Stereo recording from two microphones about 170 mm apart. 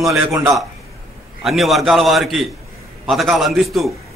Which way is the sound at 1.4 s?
Centre (ahead or behind).